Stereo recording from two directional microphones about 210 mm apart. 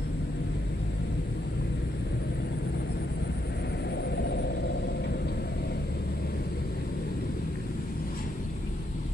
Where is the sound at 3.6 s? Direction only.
50° left (ahead or behind).